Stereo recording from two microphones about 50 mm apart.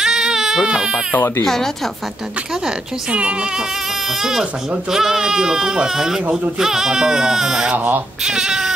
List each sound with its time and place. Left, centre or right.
0.0 s baby cry: centre
1.4 s speech: centre
2.6 s a woman's voice: right
4.1 s speech: centre
7.7 s speech: right
8.2 s speech: centre